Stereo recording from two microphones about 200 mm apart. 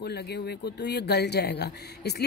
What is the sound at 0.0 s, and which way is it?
Speech, 55° left (ahead or behind).